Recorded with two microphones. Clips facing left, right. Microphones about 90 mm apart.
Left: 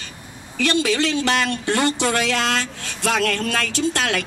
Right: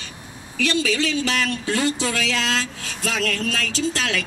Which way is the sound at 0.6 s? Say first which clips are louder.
Left 2 dB; 60° left (ahead or behind).